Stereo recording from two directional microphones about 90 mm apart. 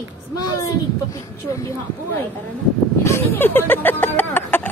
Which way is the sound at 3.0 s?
25° left (ahead or behind).